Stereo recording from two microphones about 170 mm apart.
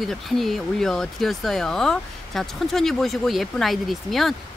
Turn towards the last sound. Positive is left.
turn(degrees=0)  # may be behind; listen again after turning